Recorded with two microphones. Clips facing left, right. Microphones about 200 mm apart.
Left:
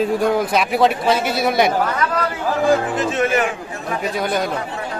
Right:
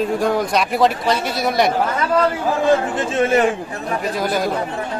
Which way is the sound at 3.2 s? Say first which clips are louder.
Right 4 dB; 30° right (ahead or behind).